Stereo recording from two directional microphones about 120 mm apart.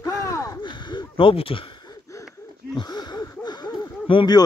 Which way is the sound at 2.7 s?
35° left (ahead or behind).